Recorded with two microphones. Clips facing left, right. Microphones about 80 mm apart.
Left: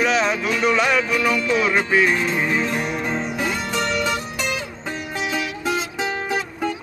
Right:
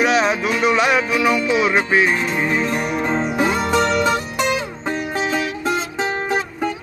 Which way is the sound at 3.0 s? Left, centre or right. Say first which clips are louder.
Right 5 dB; right.